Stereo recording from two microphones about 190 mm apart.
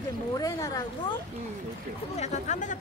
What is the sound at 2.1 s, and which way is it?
Chatter, 35° left (ahead or behind).